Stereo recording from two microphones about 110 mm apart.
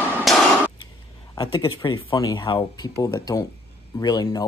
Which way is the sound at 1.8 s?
45° left (ahead or behind).